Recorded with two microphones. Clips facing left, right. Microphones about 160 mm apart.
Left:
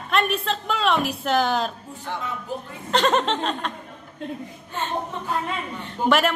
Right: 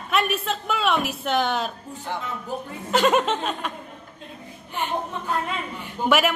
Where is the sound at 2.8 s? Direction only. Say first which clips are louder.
Right 1 dB; 10° right (ahead or behind).